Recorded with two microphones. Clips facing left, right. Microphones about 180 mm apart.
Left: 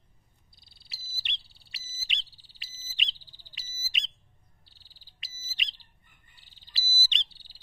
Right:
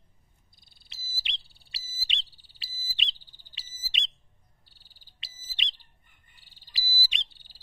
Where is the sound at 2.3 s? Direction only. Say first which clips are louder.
Right 2 dB; 50° right (ahead or behind).